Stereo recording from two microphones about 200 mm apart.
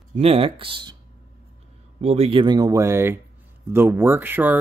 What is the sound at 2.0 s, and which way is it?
Speech, 30° right (ahead or behind).